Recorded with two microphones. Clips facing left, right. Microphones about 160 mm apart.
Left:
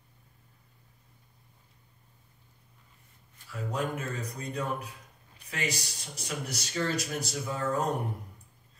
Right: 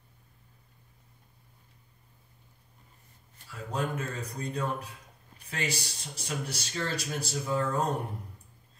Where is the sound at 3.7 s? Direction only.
30° right (ahead or behind).